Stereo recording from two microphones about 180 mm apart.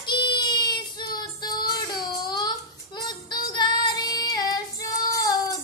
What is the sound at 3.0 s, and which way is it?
Child singing, 25° left (ahead or behind).